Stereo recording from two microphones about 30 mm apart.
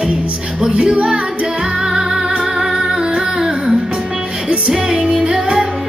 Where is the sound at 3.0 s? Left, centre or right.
Right.